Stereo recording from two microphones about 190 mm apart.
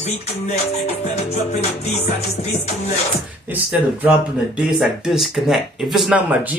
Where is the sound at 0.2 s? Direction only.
35° left (ahead or behind).